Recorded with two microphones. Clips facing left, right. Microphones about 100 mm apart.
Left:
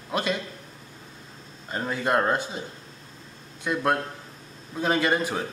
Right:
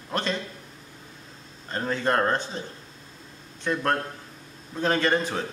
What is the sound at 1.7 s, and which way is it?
A man's voice, 10° left (ahead or behind).